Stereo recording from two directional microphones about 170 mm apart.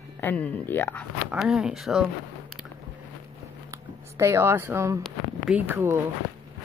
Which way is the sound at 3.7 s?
15° right (ahead or behind).